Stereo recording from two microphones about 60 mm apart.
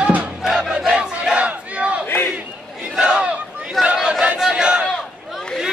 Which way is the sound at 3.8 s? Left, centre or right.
Centre.